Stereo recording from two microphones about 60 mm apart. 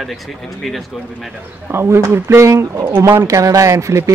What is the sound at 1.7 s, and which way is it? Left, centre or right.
Speech, right.